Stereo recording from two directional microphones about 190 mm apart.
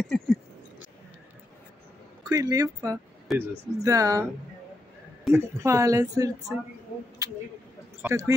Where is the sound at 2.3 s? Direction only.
20° right (ahead or behind).